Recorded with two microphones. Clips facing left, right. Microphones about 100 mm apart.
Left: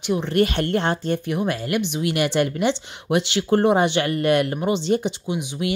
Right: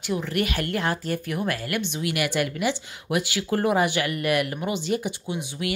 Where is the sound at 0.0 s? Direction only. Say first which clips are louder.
Left 6 dB; 25° left (ahead or behind).